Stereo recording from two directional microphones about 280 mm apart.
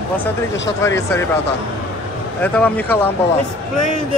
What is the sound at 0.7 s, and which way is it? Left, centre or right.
Speech, centre.